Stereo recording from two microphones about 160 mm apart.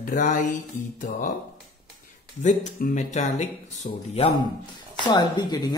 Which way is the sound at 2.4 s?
50° left (ahead or behind).